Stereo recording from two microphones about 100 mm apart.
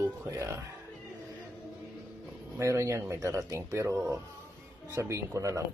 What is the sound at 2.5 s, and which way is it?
Speech, 30° right (ahead or behind).